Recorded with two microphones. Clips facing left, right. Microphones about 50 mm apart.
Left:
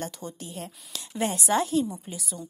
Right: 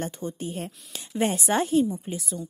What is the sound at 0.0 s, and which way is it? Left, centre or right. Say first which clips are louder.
A woman's voice: right 4 dB; right.